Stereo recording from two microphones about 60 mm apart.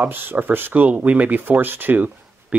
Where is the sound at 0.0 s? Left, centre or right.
Right.